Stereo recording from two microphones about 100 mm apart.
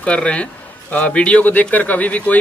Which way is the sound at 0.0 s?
10° left (ahead or behind).